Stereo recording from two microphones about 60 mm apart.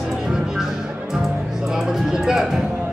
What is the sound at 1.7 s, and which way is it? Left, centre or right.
Music, centre.